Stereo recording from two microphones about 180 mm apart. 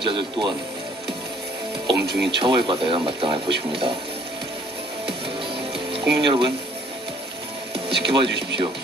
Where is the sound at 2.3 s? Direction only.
25° right (ahead or behind).